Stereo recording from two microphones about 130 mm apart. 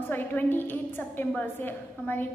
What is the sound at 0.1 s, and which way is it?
A woman's voice, 15° left (ahead or behind).